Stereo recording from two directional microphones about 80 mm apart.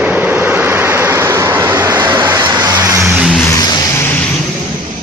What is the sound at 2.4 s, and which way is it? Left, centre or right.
Vehicle, right.